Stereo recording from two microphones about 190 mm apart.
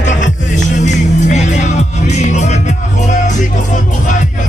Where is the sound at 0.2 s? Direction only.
40° left (ahead or behind).